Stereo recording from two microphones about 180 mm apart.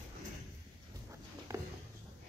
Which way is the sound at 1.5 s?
15° right (ahead or behind).